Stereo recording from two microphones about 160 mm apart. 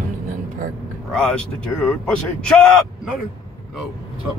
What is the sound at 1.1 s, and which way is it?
Speech, 5° left (ahead or behind).